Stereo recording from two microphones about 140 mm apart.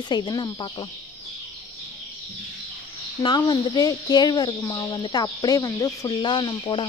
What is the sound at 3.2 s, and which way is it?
Speech, 30° left (ahead or behind).